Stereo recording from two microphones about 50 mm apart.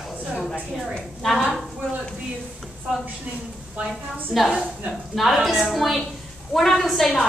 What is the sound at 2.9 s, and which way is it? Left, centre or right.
Speech, centre.